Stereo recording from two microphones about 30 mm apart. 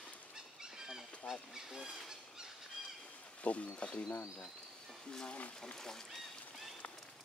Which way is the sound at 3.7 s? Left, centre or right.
Left.